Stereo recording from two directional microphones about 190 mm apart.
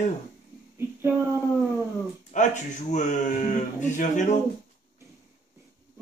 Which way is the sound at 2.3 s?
40° left (ahead or behind).